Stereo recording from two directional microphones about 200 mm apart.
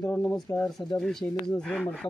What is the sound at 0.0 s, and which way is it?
Speech, 10° left (ahead or behind).